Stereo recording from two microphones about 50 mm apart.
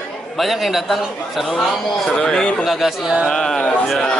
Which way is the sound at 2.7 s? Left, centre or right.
Centre.